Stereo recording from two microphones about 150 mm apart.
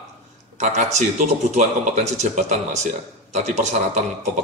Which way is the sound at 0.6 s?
50° right (ahead or behind).